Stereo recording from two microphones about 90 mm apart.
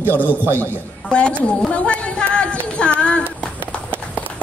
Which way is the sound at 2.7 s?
10° left (ahead or behind).